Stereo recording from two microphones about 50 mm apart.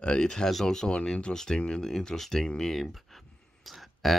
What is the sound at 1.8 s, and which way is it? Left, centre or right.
Speech, centre.